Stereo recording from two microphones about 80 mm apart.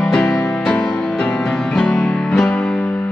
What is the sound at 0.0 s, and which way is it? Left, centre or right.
Music, centre.